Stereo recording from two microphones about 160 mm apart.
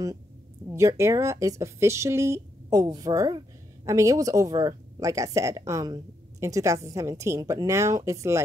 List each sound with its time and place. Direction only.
0.7 s speech: 15° right (ahead or behind)